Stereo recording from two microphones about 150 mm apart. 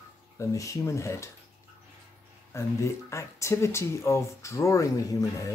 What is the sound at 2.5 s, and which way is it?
Speech, 20° left (ahead or behind).